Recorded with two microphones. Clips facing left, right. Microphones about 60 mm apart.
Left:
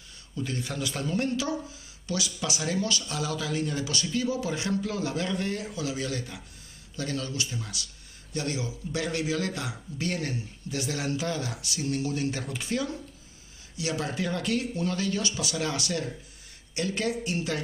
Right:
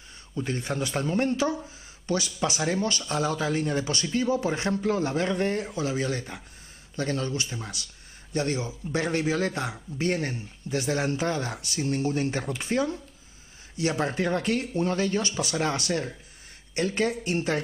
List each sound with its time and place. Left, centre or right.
0.3 s a man's voice: right